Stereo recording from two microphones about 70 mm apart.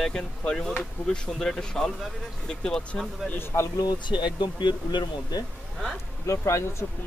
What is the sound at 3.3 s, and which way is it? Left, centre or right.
Speech, left.